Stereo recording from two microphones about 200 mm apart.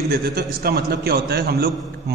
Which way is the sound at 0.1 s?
50° right (ahead or behind).